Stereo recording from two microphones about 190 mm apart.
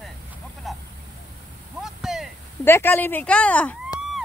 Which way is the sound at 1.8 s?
Centre (ahead or behind).